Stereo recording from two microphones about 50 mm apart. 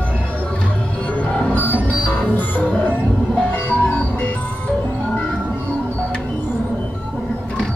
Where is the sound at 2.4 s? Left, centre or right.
Left.